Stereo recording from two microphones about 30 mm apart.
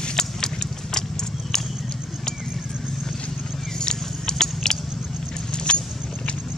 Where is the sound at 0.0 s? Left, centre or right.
Centre.